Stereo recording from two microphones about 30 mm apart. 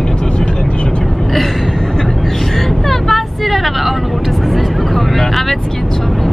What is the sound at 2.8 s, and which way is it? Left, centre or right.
Vehicle, centre.